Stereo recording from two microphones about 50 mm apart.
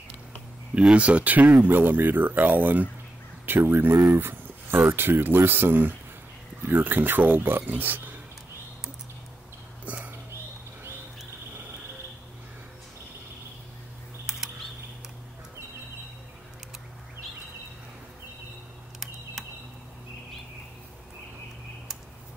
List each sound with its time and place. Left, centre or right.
0.9 s speech: right
1.7 s speech: right
3.7 s speech: right
9.8 s whispering: right